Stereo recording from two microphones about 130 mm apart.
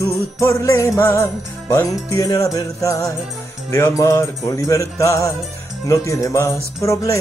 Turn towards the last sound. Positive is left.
turn(degrees=25)  # may be behind; listen again after turning